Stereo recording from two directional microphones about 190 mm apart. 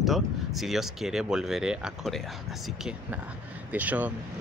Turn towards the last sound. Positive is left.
turn(degrees=-10)  # may be behind; listen again after turning